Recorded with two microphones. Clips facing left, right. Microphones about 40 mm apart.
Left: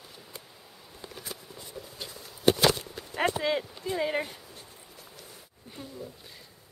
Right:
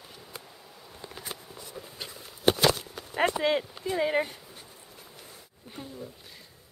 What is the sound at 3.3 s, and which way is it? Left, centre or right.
Speech, centre.